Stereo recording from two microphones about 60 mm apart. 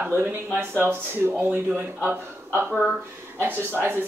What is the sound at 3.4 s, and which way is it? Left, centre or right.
Speech, right.